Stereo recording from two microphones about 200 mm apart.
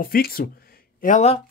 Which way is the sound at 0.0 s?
45° left (ahead or behind).